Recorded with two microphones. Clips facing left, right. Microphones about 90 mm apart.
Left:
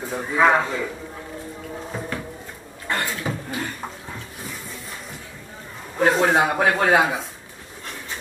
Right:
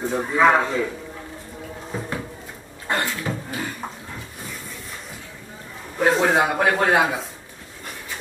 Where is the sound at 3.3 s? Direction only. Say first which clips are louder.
Even; 5° left (ahead or behind).